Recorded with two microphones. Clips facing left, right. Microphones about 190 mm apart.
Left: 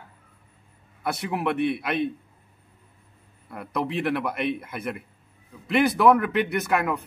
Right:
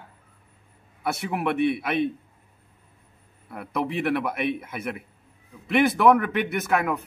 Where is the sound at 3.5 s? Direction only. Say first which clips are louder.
Even; centre (ahead or behind).